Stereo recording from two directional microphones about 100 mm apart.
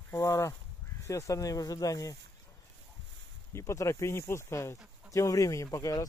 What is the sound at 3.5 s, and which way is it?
Speech, 30° left (ahead or behind).